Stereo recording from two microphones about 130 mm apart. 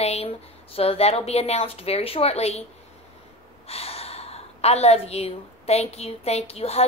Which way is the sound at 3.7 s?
50° left (ahead or behind).